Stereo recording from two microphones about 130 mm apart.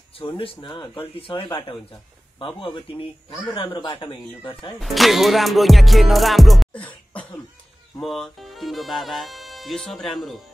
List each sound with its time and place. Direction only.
0.4 s speech: 40° left (ahead or behind)
4.7 s speech: centre (ahead or behind)
8.0 s speech: centre (ahead or behind)